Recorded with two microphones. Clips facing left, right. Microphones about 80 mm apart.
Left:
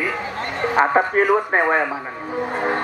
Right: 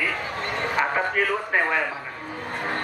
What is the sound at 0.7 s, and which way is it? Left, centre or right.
A man's voice, left.